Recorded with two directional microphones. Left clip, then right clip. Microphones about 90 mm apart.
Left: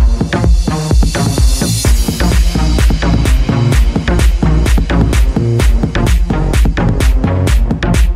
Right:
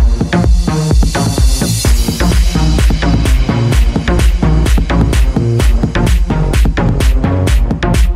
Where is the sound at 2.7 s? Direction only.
Centre (ahead or behind).